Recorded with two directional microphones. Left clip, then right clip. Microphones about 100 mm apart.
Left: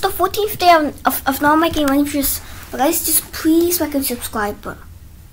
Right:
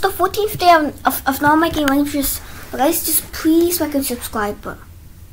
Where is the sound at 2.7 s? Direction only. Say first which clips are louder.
Even; 5° right (ahead or behind).